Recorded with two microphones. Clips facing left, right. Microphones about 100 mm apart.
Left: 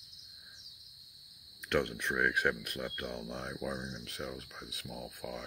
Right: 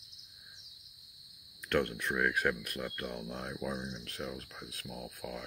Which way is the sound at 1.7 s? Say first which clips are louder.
Even; 20° left (ahead or behind).